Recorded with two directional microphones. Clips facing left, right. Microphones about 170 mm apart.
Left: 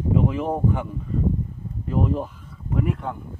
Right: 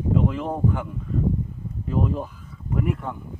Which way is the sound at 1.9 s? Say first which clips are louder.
Left 1 dB; centre (ahead or behind).